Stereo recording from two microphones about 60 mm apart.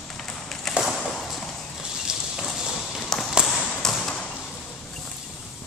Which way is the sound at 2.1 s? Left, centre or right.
Centre.